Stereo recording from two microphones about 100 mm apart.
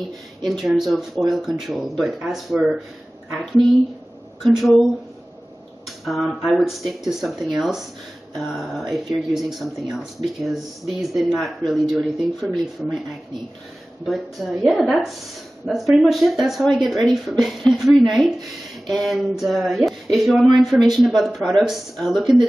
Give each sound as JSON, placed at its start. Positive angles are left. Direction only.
{"t": 0.4, "sound": "speech", "side_deg": 0}
{"t": 6.0, "sound": "speech", "side_deg": 0}
{"t": 14.0, "sound": "speech", "side_deg": 0}